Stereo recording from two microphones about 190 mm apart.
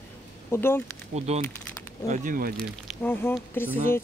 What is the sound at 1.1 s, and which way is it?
Speech, 35° right (ahead or behind).